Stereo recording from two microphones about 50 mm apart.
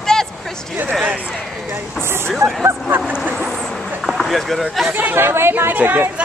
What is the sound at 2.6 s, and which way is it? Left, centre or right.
Speech, right.